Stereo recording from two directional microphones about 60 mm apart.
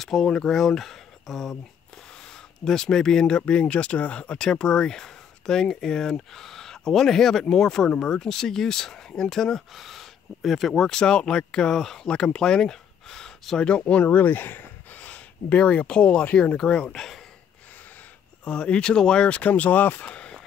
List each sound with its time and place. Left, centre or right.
0.0 s speech: centre
2.6 s speech: centre
14.0 s speech: left; by 17.2 s centre
18.4 s speech: centre